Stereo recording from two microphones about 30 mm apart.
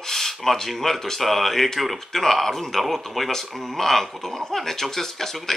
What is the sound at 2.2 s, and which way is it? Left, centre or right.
Speech, centre.